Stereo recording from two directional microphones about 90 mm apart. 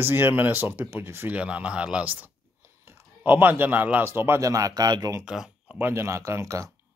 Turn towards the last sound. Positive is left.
turn(degrees=-35)  # may be behind; listen again after turning